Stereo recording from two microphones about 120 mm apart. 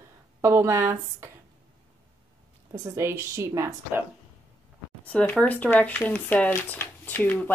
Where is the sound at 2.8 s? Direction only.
25° right (ahead or behind).